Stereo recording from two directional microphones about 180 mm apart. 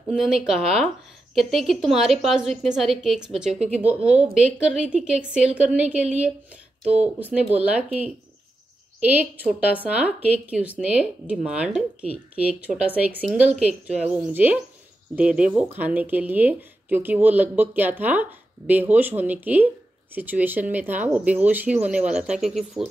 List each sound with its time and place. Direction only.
0.1 s a woman's voice: 5° right (ahead or behind)
6.8 s speech: 40° right (ahead or behind)
7.2 s speech: 10° right (ahead or behind)
9.0 s a woman's voice: 10° right (ahead or behind)